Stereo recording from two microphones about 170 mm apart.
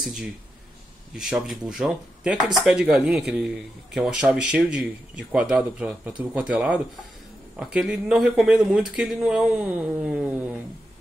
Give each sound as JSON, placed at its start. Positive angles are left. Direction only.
{"t": 1.1, "sound": "speech", "side_deg": -5}